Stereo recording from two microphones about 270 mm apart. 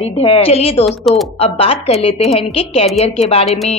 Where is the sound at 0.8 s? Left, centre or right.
Centre.